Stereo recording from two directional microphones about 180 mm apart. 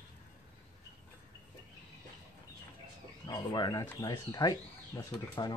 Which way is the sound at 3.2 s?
25° left (ahead or behind).